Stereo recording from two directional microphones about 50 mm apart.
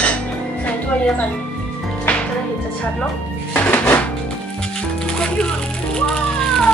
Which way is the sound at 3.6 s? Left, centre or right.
Left.